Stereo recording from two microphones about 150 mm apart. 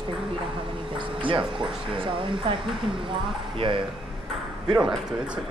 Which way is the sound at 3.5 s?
35° right (ahead or behind).